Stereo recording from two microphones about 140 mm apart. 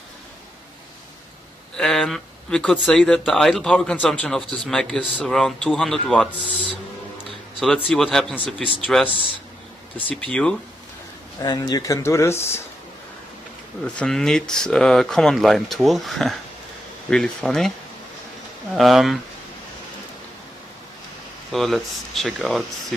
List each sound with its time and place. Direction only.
1.8 s speech: centre (ahead or behind)
7.6 s speech: 5° left (ahead or behind)
11.4 s speech: 30° left (ahead or behind)
13.8 s speech: 5° left (ahead or behind)
18.8 s speech: centre (ahead or behind)
21.5 s speech: centre (ahead or behind)